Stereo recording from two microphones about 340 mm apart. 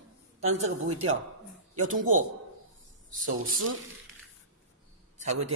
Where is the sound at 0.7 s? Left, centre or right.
Right.